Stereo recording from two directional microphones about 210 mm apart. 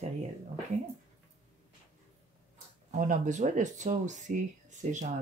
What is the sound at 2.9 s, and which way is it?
Speech, 35° right (ahead or behind).